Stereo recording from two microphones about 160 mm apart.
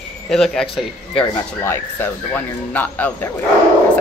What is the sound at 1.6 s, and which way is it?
Speech, 15° left (ahead or behind).